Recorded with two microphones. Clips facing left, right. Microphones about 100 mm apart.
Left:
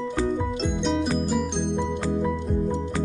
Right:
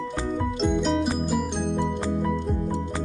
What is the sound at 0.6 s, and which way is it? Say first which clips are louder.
Music: right 4 dB; 5° right (ahead or behind).